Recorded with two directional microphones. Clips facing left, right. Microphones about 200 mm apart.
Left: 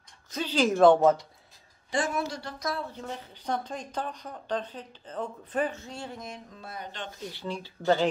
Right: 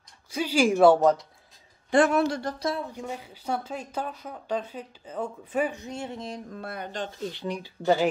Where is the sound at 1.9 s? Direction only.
65° right (ahead or behind).